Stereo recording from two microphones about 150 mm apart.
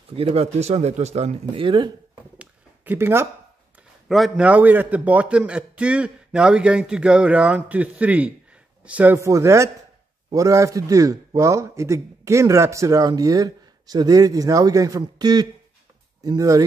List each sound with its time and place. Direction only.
0.3 s speech: 45° right (ahead or behind)
1.5 s speech: 35° right (ahead or behind)
2.3 s a sound: 10° right (ahead or behind)
4.1 s a man's voice: 5° right (ahead or behind); by 16.6 s 25° right (ahead or behind)